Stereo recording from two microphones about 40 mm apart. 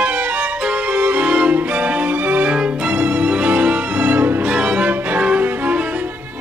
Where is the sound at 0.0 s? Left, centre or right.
Right.